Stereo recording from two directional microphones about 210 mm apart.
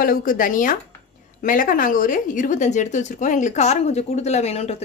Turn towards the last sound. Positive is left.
turn(degrees=30)  # may be behind; listen again after turning